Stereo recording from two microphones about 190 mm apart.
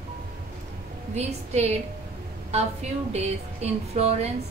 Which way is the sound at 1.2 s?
35° right (ahead or behind).